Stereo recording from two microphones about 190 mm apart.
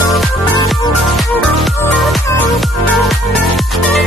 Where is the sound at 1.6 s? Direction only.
Centre (ahead or behind).